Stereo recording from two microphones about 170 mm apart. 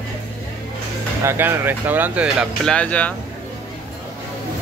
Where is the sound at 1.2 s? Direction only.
15° right (ahead or behind); by 3.2 s 10° left (ahead or behind).